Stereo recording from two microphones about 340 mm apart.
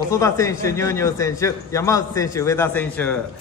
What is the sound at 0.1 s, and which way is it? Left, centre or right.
A man's voice, centre.